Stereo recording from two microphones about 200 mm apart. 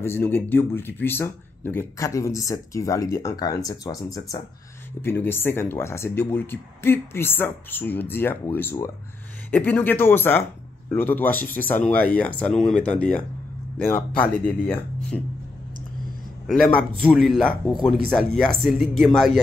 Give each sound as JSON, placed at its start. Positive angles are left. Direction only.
{"t": 0.0, "sound": "speech", "side_deg": 10}
{"t": 16.4, "sound": "speech", "side_deg": 0}